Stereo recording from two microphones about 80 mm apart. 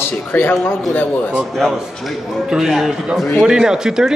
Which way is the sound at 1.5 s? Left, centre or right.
Centre.